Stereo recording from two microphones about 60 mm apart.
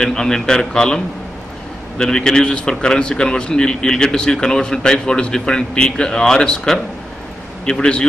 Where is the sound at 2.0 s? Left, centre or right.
Centre.